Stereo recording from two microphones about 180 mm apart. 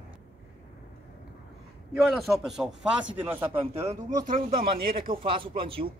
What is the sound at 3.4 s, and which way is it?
Speech, 30° right (ahead or behind).